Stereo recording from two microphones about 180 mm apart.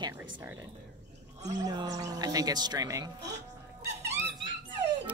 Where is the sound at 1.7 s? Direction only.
20° right (ahead or behind).